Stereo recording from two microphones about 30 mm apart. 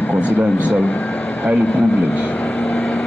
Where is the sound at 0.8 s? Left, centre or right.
Left.